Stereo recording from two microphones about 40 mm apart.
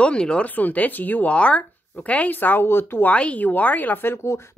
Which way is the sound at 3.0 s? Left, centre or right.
Left.